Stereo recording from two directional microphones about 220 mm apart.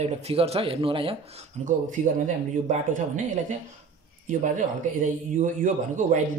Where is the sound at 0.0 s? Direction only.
25° right (ahead or behind).